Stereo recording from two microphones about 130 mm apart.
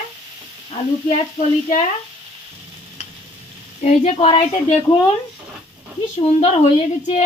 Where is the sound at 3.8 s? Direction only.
55° left (ahead or behind).